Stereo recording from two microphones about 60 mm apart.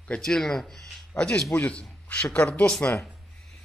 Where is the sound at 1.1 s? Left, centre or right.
Centre.